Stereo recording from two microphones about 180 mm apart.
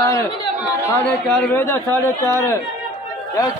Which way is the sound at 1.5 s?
15° left (ahead or behind).